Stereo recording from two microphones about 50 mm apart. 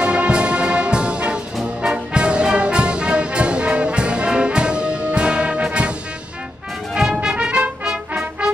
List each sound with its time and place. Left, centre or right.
0.0 s brass instrument: right
1.8 s music: right
6.9 s brass instrument: centre
7.2 s trumpet: centre